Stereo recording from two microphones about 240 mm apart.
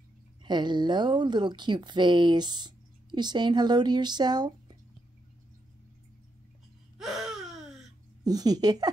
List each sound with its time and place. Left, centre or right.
0.4 s speech: centre
7.0 s a sound: centre
8.2 s speech: centre